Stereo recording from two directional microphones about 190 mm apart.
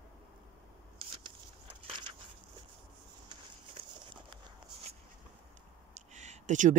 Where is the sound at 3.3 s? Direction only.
25° right (ahead or behind).